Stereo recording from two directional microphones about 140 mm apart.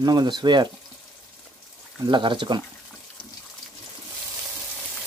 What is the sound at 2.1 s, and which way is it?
Speech, 35° right (ahead or behind).